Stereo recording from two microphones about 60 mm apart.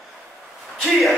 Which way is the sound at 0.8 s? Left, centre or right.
Centre.